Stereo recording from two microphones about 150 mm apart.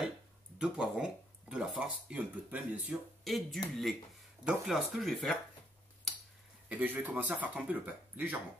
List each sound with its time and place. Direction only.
0.6 s speech: 5° right (ahead or behind)
3.3 s speech: centre (ahead or behind)
6.7 s speech: 10° right (ahead or behind)